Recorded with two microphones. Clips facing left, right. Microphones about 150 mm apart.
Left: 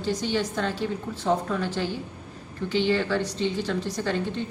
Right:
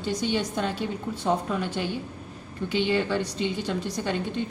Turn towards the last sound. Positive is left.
turn(degrees=-15)  # may be behind; listen again after turning